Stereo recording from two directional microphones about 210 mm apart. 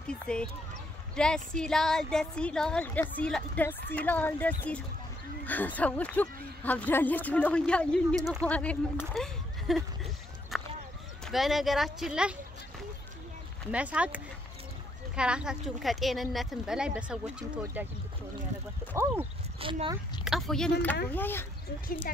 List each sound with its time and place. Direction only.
0.1 s speech: 5° left (ahead or behind)
10.5 s a sound: centre (ahead or behind)
11.2 s speech: centre (ahead or behind)
13.7 s speech: 5° right (ahead or behind)
18.9 s speech: 10° right (ahead or behind)
19.6 s speech: 25° right (ahead or behind)
20.2 s speech: centre (ahead or behind)